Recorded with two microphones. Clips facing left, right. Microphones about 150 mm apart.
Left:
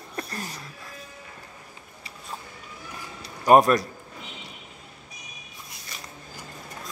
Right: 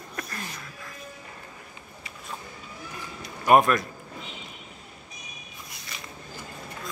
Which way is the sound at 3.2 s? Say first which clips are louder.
Left 2 dB; 35° left (ahead or behind).